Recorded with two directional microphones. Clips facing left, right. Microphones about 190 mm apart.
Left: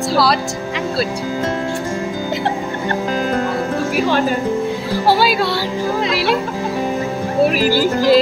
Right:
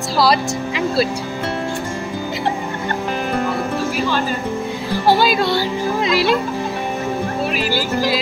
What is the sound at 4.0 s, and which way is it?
Speech, 55° left (ahead or behind).